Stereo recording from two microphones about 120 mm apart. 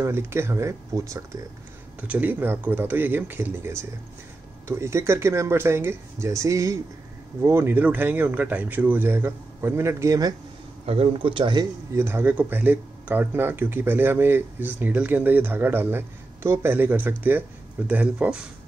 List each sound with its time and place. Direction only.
0.0 s speech: 20° right (ahead or behind)
2.0 s speech: 15° right (ahead or behind)
10.9 s a man's voice: 50° right (ahead or behind)
11.9 s speech: 20° right (ahead or behind)